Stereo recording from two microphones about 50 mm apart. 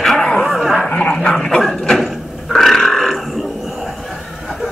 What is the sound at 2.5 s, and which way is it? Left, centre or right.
Grunt, centre.